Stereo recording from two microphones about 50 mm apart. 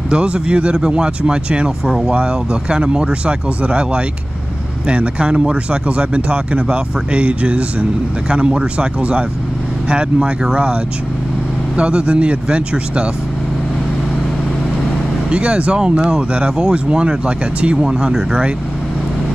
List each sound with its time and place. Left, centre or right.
0.1 s speech: right
15.2 s speech: right